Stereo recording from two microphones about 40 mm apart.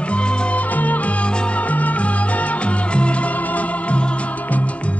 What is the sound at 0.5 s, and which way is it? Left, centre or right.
Music, left.